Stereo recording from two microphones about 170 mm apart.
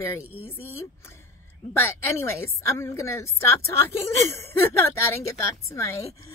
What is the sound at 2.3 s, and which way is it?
Speech, 15° left (ahead or behind).